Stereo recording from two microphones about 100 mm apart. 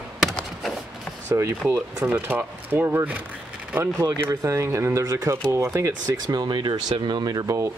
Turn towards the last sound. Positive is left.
turn(degrees=-30)  # may be behind; listen again after turning